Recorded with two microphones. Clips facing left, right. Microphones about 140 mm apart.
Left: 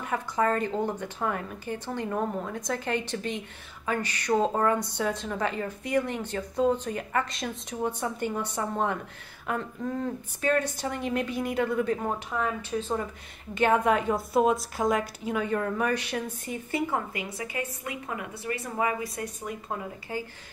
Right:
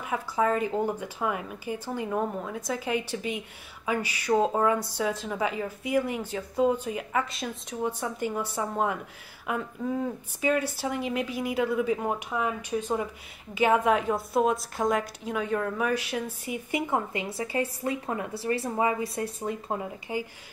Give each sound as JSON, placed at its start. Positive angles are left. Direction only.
{"t": 0.0, "sound": "a woman's voice", "side_deg": -5}